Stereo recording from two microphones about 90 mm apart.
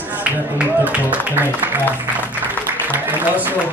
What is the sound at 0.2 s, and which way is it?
Speech, 15° right (ahead or behind).